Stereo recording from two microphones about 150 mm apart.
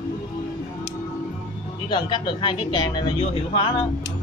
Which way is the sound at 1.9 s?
30° left (ahead or behind).